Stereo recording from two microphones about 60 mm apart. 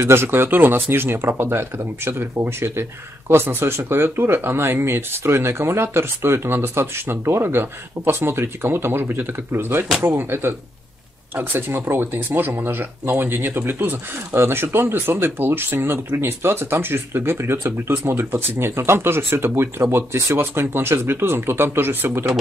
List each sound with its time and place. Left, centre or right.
0.0 s speech: right